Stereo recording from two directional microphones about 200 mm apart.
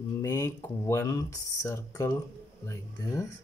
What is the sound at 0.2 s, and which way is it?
Speech, 15° left (ahead or behind).